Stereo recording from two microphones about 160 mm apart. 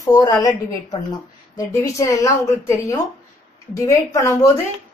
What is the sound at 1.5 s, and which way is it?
A woman's voice, 20° left (ahead or behind).